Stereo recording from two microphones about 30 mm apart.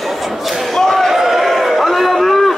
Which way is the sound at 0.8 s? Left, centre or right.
Centre.